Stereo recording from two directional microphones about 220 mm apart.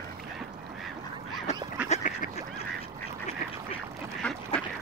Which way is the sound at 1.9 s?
35° left (ahead or behind).